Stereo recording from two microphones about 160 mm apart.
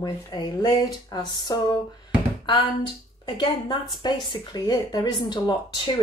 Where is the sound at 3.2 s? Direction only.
30° left (ahead or behind).